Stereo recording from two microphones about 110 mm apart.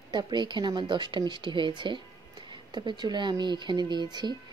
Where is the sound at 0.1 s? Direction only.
40° right (ahead or behind).